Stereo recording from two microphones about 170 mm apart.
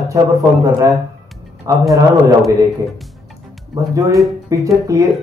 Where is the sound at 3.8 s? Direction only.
20° right (ahead or behind).